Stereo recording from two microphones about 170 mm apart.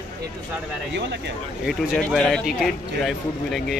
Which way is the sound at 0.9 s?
90° right.